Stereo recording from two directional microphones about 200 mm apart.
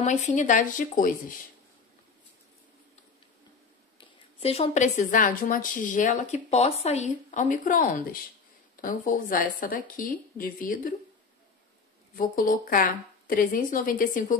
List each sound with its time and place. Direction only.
0.0 s a woman's voice: 35° left (ahead or behind)
4.4 s a woman's voice: 30° left (ahead or behind)
12.2 s speech: 45° left (ahead or behind)